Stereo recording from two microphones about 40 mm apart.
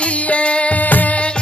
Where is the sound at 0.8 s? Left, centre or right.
Left.